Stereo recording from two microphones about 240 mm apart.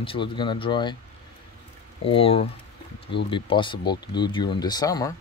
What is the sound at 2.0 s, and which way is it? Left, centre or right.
Speech, left.